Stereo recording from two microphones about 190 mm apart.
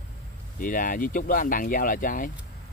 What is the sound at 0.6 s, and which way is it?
Speech, 45° left (ahead or behind).